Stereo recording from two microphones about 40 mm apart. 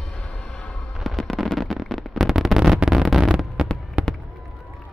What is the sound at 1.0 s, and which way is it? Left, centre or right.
Fireworks, centre.